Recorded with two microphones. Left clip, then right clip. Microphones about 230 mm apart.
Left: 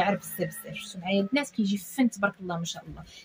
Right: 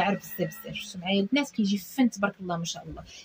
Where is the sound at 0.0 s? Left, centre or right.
Centre.